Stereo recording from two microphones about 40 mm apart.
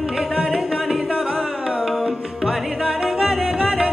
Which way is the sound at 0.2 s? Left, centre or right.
Centre.